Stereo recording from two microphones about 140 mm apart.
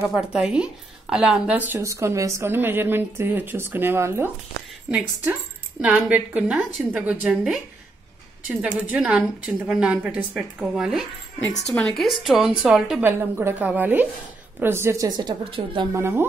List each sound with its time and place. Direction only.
0.1 s a woman's voice: 5° right (ahead or behind)
5.8 s a woman's voice: 10° right (ahead or behind)
8.5 s a woman's voice: 10° right (ahead or behind)
13.0 s a woman's voice: 15° right (ahead or behind); by 15.9 s 35° right (ahead or behind)
15.9 s a woman's voice: 20° right (ahead or behind)